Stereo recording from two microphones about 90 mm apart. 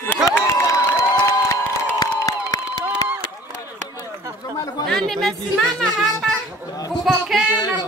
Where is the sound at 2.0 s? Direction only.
45° left (ahead or behind).